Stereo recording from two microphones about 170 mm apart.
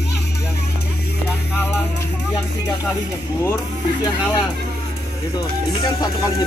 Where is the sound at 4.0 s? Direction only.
25° left (ahead or behind).